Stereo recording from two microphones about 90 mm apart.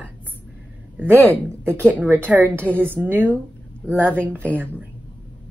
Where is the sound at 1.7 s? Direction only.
25° right (ahead or behind).